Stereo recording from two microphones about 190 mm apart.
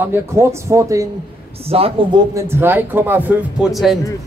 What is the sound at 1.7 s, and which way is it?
Speech, 30° right (ahead or behind).